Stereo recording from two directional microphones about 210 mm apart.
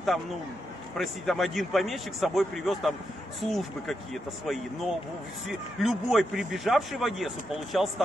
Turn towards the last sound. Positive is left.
turn(degrees=0)  # may be behind; listen again after turning